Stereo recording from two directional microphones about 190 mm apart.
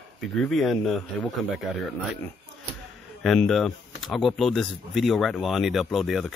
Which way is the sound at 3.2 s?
Centre (ahead or behind).